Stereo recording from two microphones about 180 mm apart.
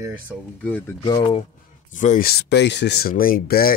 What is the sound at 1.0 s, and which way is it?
Speech, 25° left (ahead or behind).